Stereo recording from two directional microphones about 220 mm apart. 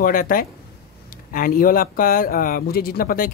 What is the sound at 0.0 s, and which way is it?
Speech, 40° left (ahead or behind).